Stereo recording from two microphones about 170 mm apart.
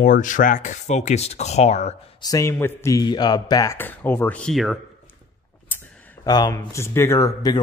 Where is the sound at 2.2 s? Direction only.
20° left (ahead or behind); by 4.7 s centre (ahead or behind).